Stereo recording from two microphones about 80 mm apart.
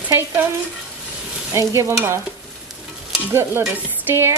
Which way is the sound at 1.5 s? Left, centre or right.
Right.